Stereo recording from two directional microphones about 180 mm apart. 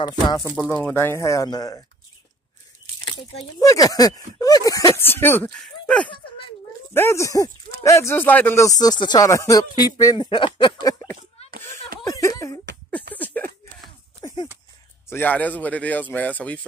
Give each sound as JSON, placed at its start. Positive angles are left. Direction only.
{"t": 0.5, "sound": "speech", "side_deg": 10}
{"t": 3.6, "sound": "speech", "side_deg": 20}
{"t": 12.0, "sound": "snicker", "side_deg": 20}
{"t": 13.1, "sound": "a sound", "side_deg": 10}
{"t": 14.2, "sound": "a sound", "side_deg": 25}
{"t": 15.0, "sound": "speech", "side_deg": 10}